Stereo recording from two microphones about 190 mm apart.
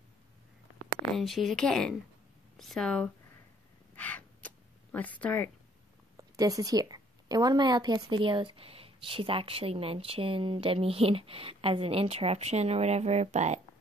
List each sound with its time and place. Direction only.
1.1 s speech: centre (ahead or behind)
3.9 s crow: 10° left (ahead or behind)
6.1 s a woman's voice: 20° right (ahead or behind); by 13.6 s 35° right (ahead or behind)